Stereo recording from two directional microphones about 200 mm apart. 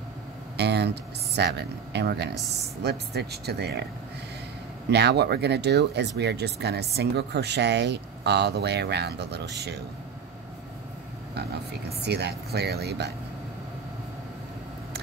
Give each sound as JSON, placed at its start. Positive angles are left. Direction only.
{"t": 0.6, "sound": "speech", "side_deg": -55}
{"t": 4.9, "sound": "speech", "side_deg": -55}
{"t": 12.0, "sound": "speech", "side_deg": -55}